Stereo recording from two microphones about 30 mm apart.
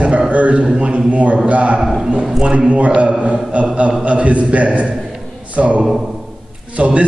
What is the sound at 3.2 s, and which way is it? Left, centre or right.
A man's voice, right.